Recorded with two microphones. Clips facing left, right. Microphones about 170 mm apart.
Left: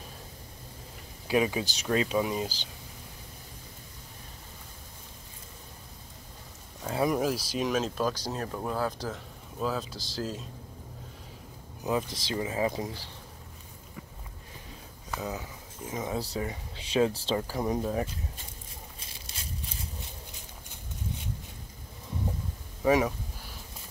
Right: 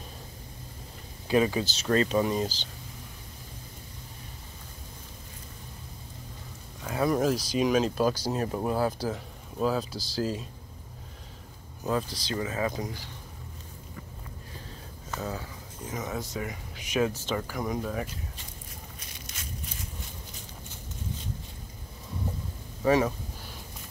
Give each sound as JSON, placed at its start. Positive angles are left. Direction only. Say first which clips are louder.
{"t": 1.2, "sound": "speech", "louder": "right 2 dB", "side_deg": 10}
{"t": 6.8, "sound": "a sound", "louder": "even", "side_deg": 25}
{"t": 7.1, "sound": "speech", "louder": "right 3 dB", "side_deg": 5}
{"t": 11.8, "sound": "speech", "louder": "even", "side_deg": 20}
{"t": 15.0, "sound": "speech", "louder": "even", "side_deg": 15}
{"t": 15.9, "sound": "speech", "louder": "left 1 dB", "side_deg": 25}
{"t": 18.9, "sound": "a sound", "louder": "right 2 dB", "side_deg": 30}
{"t": 22.8, "sound": "speech", "louder": "right 1 dB", "side_deg": 15}